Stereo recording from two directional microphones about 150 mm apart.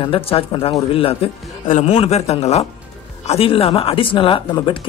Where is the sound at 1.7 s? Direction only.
50° left (ahead or behind).